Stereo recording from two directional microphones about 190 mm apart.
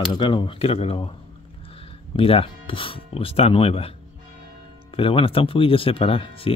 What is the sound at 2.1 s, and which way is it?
Speech, 30° left (ahead or behind).